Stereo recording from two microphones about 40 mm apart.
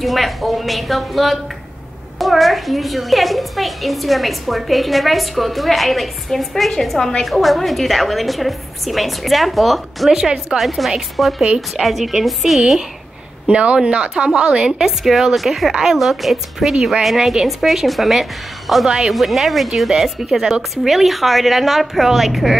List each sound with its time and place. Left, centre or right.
0.0 s a woman's voice: centre
10.1 s a woman's voice: centre
10.6 s a woman's voice: centre
13.5 s a woman's voice: right
14.8 s a woman's voice: centre